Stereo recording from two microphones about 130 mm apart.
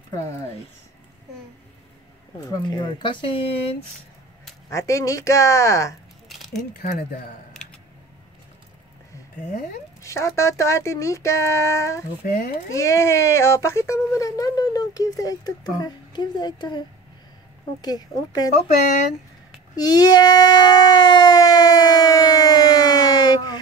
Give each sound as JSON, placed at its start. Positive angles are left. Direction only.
{"t": 2.4, "sound": "speech", "side_deg": 35}
{"t": 4.6, "sound": "speech", "side_deg": 25}
{"t": 6.2, "sound": "a sound", "side_deg": 0}
{"t": 10.0, "sound": "speech", "side_deg": 20}
{"t": 17.8, "sound": "speech", "side_deg": 30}
{"t": 19.7, "sound": "speech", "side_deg": 30}